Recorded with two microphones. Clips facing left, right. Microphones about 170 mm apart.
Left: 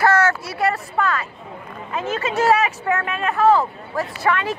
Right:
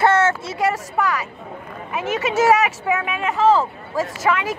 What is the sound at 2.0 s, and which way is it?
Speech, 80° right.